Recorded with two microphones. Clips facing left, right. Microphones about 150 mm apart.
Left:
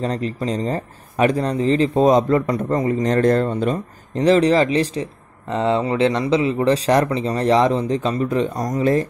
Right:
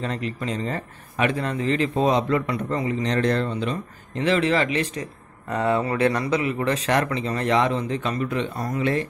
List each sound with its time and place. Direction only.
0.0 s speech: 35° left (ahead or behind)